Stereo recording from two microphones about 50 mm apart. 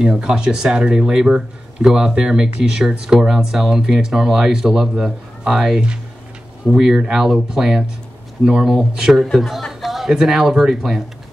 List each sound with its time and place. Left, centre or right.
0.0 s speech: centre
9.7 s speech: centre